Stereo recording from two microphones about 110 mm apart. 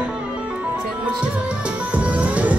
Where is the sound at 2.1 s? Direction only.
10° right (ahead or behind).